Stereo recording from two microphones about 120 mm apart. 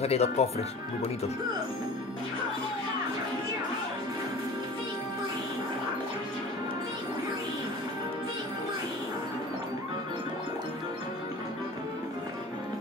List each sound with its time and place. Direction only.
0.0 s speech: 60° left (ahead or behind)